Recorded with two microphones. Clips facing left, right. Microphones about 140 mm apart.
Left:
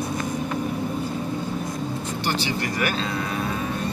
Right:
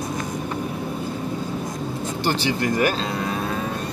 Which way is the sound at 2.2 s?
50° right (ahead or behind).